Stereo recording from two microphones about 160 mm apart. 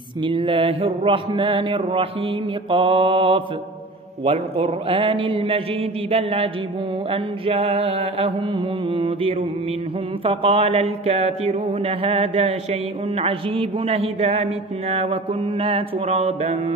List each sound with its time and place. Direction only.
0.2 s speech: 30° right (ahead or behind)